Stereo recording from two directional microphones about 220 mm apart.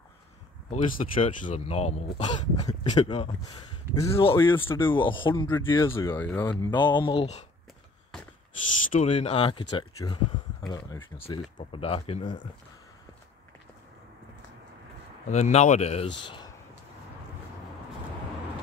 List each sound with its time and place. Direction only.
0.7 s speech: 35° left (ahead or behind)
2.3 s speech: 20° left (ahead or behind)
4.9 s speech: 20° left (ahead or behind)
5.5 s speech: 10° left (ahead or behind); by 7.4 s 25° left (ahead or behind)
8.9 s speech: 30° left (ahead or behind)
11.1 s speech: 25° left (ahead or behind)
15.2 s speech: 30° left (ahead or behind)